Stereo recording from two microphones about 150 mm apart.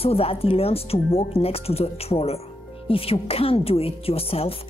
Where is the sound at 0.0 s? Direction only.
40° left (ahead or behind).